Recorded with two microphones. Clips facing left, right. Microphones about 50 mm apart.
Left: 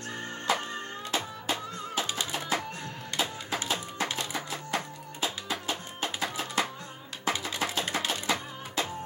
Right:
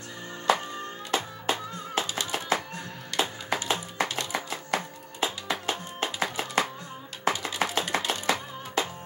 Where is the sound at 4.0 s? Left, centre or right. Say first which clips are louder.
Right 3 dB; right.